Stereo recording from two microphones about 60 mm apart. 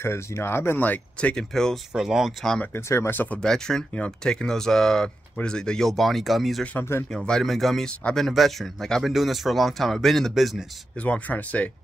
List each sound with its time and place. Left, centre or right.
0.0 s speech: left
1.3 s speech: centre
2.0 s speech: centre
2.7 s speech: left
3.1 s speech: left
3.4 s speech: centre
6.8 s speech: left
7.4 s speech: centre
9.0 s speech: centre
11.1 s speech: left